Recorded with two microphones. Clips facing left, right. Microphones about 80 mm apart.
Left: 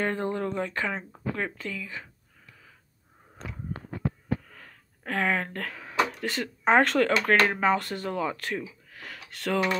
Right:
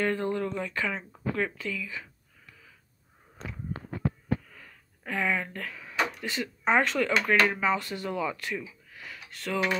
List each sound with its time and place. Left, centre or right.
0.0 s speech: left
1.1 s speech: left
1.6 s speech: left
4.5 s speech: left
8.9 s a sound: left